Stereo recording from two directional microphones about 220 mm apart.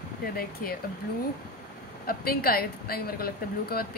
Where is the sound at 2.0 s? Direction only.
45° left (ahead or behind).